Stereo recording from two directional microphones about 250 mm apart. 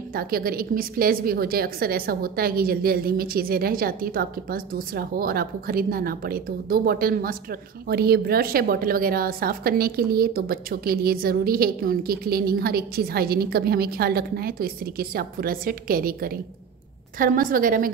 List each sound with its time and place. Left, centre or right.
0.1 s a woman's voice: right